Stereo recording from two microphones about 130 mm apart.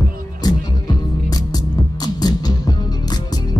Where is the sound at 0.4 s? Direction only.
30° left (ahead or behind).